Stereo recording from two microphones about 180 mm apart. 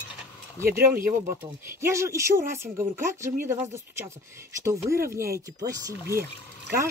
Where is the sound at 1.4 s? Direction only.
15° right (ahead or behind).